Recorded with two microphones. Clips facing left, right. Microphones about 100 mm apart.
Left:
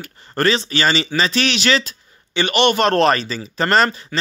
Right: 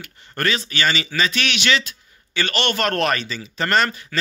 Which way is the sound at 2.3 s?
20° left (ahead or behind).